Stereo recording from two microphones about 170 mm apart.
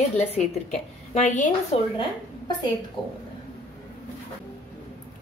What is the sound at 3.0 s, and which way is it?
Speech, 30° left (ahead or behind).